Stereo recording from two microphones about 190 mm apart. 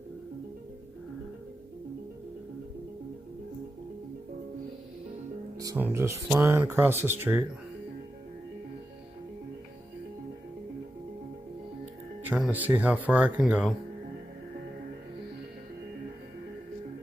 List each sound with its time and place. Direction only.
5.6 s speech: 15° right (ahead or behind)
12.2 s speech: 10° right (ahead or behind)